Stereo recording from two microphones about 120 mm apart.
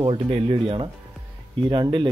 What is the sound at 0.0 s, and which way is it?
Speech, 50° right (ahead or behind).